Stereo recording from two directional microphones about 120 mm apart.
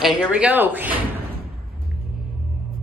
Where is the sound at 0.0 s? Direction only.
5° right (ahead or behind).